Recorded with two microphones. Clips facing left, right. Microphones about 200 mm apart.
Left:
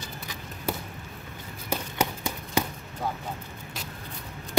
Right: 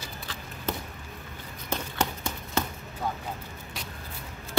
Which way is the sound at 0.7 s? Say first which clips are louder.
Left 1 dB; 10° left (ahead or behind).